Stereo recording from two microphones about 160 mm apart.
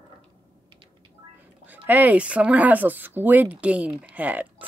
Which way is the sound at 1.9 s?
10° right (ahead or behind).